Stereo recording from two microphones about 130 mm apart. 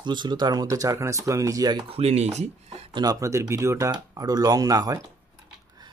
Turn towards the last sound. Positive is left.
turn(degrees=-30)  # may be behind; listen again after turning